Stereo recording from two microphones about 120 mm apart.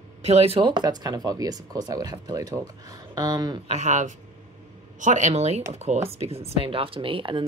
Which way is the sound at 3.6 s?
80° right.